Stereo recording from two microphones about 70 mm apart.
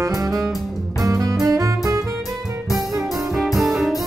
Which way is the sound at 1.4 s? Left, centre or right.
Right.